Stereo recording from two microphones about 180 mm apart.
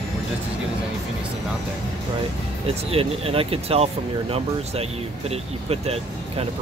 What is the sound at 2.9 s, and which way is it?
Speech, 30° right (ahead or behind).